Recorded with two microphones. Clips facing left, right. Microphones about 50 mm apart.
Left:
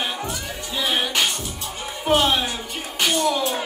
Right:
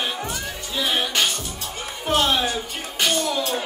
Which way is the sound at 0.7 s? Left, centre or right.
Centre.